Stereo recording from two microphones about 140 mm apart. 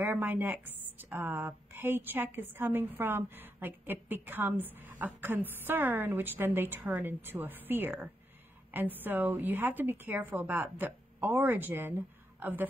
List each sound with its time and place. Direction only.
0.0 s a woman's voice: 15° right (ahead or behind)